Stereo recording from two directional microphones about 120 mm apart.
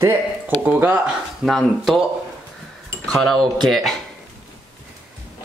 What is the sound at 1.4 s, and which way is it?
Speech, centre (ahead or behind).